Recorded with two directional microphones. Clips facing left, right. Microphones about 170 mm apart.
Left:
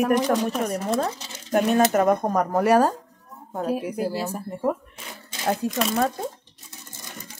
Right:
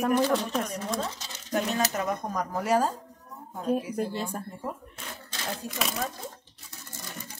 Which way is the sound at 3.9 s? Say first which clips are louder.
Left 4 dB; 5° left (ahead or behind).